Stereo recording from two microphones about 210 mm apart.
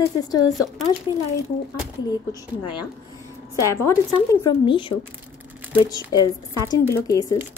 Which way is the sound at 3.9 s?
15° left (ahead or behind).